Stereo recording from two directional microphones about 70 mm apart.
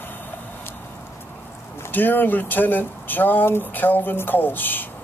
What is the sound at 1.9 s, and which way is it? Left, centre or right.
Speech, left.